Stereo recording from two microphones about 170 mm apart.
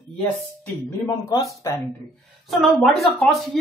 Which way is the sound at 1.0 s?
20° left (ahead or behind).